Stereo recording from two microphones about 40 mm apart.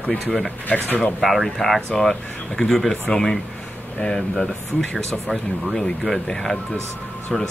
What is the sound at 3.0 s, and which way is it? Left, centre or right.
Speech, centre.